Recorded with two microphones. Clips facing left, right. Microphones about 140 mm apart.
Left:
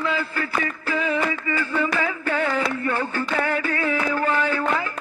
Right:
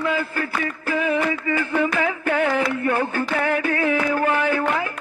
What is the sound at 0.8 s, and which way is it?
Music, 50° right (ahead or behind).